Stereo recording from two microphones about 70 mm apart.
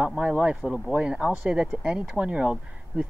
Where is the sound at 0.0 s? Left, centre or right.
Centre.